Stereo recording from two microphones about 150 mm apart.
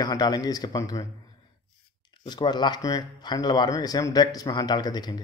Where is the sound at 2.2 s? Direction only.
30° left (ahead or behind).